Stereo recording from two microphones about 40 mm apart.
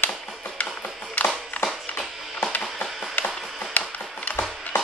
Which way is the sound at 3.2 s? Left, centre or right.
Left.